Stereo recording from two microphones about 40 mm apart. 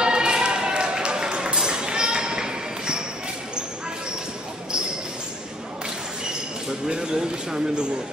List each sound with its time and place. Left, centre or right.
0.0 s run: right
6.9 s speech: centre